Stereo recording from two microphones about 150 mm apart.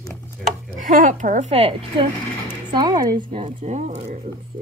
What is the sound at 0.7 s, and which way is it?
Speech, 55° right (ahead or behind).